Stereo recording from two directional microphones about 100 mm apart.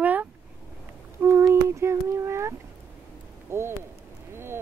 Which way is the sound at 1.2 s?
25° right (ahead or behind).